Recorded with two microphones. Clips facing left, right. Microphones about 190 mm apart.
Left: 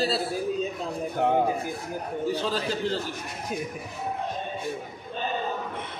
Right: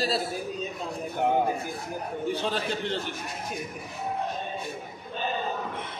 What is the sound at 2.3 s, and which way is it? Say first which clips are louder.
Speech: left 1 dB; 35° left (ahead or behind).